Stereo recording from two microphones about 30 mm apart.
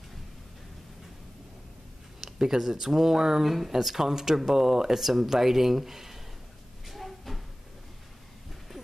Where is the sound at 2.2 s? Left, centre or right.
Centre.